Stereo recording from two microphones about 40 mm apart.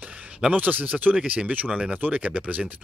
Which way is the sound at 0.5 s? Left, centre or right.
Right.